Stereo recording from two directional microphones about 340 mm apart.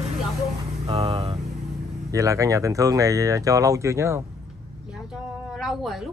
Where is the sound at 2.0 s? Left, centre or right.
Centre.